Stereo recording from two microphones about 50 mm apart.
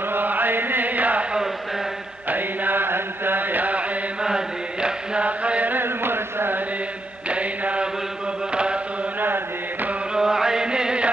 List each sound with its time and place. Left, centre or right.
0.1 s chant: right
2.2 s mantra: right
4.8 s chant: right
5.8 s chant: right
7.2 s mantra: right
10.1 s chant: centre